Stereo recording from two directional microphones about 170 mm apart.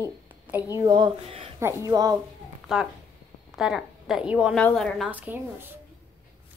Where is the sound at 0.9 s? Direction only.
25° right (ahead or behind).